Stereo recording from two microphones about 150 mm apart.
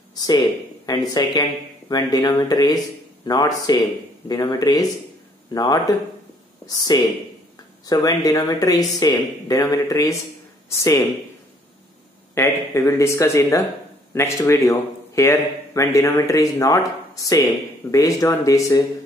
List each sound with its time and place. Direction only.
0.1 s a man's voice: 25° left (ahead or behind)
12.4 s a man's voice: 20° left (ahead or behind)